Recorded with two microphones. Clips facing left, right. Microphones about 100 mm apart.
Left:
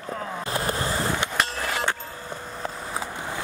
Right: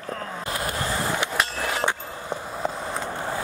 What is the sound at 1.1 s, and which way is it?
Hammer, 5° right (ahead or behind).